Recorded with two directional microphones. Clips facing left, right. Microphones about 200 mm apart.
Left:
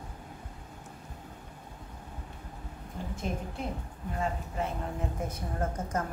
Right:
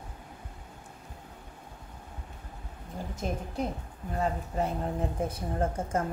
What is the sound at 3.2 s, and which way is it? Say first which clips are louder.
A woman's voice: right 3 dB; 40° right (ahead or behind).